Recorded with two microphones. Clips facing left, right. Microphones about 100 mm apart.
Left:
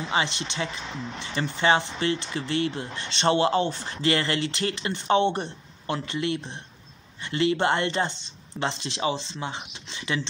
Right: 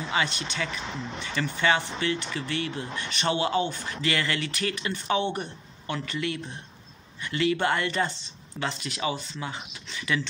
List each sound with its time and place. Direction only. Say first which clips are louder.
0.1 s speech: left 1 dB; 25° left (ahead or behind)